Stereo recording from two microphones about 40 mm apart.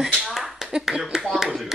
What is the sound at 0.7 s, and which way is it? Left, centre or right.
Speech, centre.